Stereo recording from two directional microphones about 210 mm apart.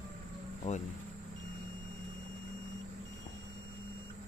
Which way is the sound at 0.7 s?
35° left (ahead or behind).